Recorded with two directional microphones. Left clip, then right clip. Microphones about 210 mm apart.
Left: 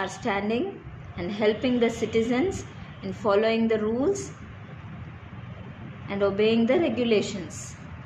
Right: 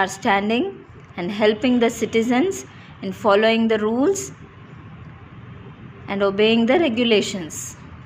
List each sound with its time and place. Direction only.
0.0 s a woman's voice: 40° right (ahead or behind)
6.0 s a woman's voice: 40° right (ahead or behind)